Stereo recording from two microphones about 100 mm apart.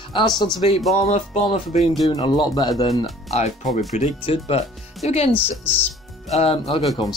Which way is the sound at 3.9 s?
75° left (ahead or behind).